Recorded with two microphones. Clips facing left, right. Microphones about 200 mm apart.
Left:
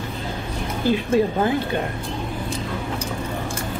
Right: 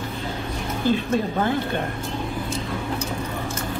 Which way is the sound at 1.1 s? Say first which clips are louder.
Left 5 dB; 10° left (ahead or behind).